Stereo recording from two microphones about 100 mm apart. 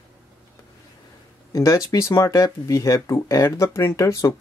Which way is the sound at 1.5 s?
35° left (ahead or behind).